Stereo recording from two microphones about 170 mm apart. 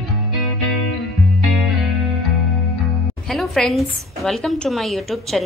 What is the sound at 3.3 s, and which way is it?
A woman's voice, centre (ahead or behind).